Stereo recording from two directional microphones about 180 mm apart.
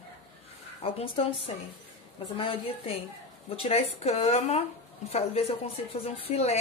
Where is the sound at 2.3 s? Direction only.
30° left (ahead or behind).